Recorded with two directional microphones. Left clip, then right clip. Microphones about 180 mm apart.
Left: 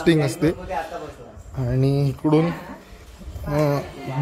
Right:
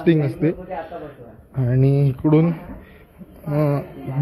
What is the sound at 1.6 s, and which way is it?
Speech, 5° left (ahead or behind).